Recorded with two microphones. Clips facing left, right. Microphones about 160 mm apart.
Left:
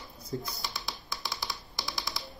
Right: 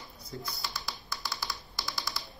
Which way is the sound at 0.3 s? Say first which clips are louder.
Left 6 dB; 35° left (ahead or behind).